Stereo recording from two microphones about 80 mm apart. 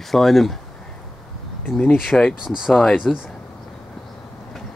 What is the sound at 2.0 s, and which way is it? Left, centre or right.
Speech, centre.